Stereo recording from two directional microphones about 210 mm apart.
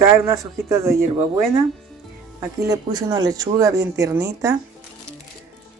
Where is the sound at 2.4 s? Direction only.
20° right (ahead or behind).